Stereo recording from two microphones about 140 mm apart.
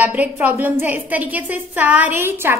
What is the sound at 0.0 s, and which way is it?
A woman's voice, 10° right (ahead or behind).